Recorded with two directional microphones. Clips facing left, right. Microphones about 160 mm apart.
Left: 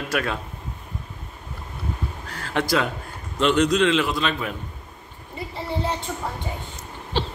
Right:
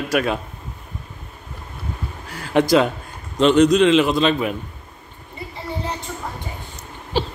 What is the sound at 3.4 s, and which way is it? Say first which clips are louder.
A man's voice: right 5 dB; 20° right (ahead or behind).